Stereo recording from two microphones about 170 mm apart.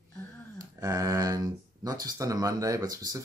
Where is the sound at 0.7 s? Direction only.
20° right (ahead or behind).